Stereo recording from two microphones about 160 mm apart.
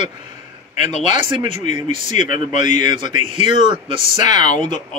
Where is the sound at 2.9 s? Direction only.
30° right (ahead or behind).